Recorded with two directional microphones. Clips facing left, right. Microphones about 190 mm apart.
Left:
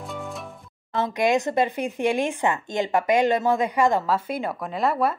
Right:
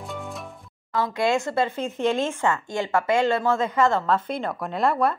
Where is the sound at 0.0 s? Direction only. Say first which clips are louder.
Left 1 dB; centre (ahead or behind).